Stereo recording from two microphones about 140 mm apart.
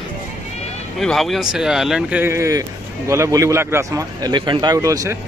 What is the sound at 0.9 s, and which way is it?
Speech, centre (ahead or behind).